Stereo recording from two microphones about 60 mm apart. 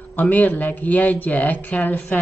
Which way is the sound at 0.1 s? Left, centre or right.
Left.